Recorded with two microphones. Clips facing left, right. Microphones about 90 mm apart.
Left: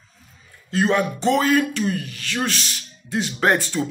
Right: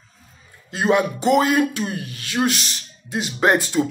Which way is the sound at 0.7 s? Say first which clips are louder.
Right 1 dB; 15° right (ahead or behind).